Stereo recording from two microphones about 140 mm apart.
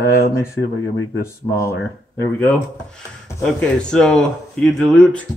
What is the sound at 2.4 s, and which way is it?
Speech, 10° left (ahead or behind).